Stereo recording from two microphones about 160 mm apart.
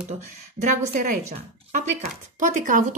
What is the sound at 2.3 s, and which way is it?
Speech, 55° right (ahead or behind).